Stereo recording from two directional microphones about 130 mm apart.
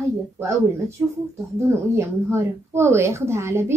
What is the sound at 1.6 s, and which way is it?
A woman's voice, 20° right (ahead or behind).